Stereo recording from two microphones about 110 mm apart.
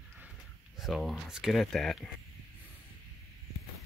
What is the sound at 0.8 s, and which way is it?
Speech, centre (ahead or behind).